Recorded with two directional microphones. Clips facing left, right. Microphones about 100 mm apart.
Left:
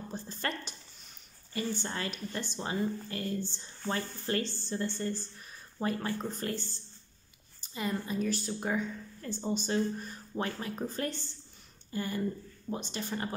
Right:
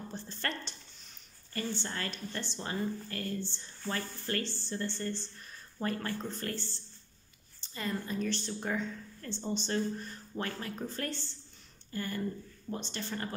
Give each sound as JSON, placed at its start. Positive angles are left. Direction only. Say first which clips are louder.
{"t": 0.1, "sound": "a sound", "louder": "left 2 dB", "side_deg": 15}
{"t": 1.5, "sound": "a woman's voice", "louder": "left 2 dB", "side_deg": 15}
{"t": 7.7, "sound": "a woman's voice", "louder": "left 2 dB", "side_deg": 15}